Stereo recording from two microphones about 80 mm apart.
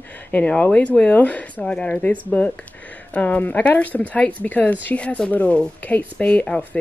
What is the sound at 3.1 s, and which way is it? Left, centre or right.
Speech, left.